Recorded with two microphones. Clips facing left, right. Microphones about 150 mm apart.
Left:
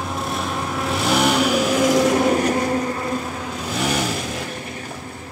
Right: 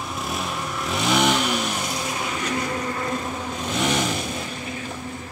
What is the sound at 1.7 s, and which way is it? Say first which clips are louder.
Vehicle: left 12 dB; 90° left.